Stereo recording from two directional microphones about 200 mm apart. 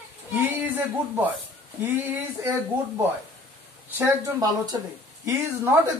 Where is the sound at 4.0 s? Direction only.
15° right (ahead or behind).